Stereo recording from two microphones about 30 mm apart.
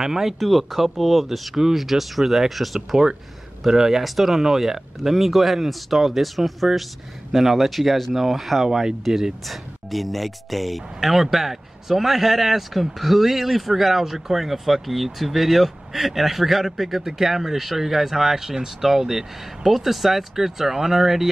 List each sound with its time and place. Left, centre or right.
0.0 s speech: centre
0.4 s speech: centre
3.6 s speech: centre
8.6 s speech: centre
9.5 s speech: centre